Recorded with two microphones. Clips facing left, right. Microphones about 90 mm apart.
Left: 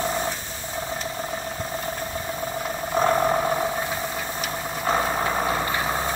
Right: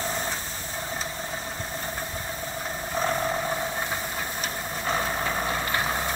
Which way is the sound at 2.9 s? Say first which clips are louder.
Left 6 dB; 45° left (ahead or behind).